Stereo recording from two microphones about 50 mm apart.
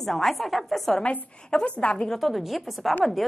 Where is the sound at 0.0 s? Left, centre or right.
Centre.